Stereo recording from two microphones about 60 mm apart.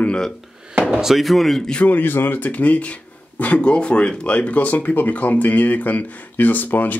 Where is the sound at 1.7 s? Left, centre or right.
Left.